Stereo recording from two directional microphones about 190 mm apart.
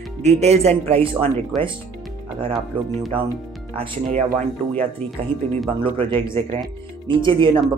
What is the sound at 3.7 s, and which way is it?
Speech, 30° right (ahead or behind).